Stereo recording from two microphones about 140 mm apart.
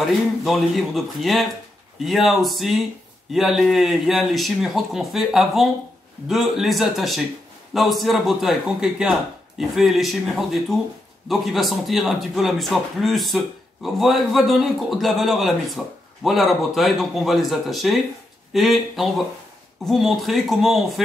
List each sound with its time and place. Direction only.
0.4 s a man's voice: centre (ahead or behind)